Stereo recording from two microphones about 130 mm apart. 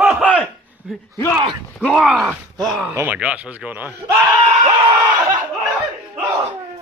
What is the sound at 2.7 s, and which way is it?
Speech, 15° right (ahead or behind).